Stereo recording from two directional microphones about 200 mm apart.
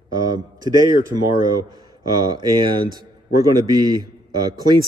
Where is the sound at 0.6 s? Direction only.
20° right (ahead or behind).